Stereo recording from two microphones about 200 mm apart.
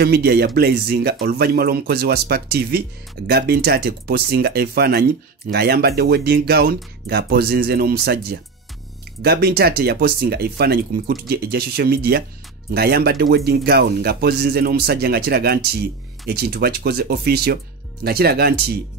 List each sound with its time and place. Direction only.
0.0 s speech: 50° right (ahead or behind)